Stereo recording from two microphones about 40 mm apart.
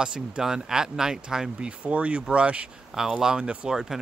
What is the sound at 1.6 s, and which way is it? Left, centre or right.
Speech, right.